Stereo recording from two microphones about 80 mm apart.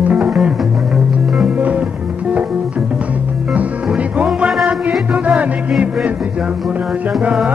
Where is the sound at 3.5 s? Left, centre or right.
Centre.